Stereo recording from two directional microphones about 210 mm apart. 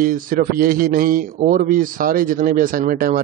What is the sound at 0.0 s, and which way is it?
A man's voice, 40° right (ahead or behind).